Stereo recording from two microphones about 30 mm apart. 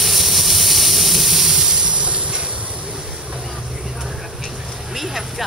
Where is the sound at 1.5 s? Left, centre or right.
Right.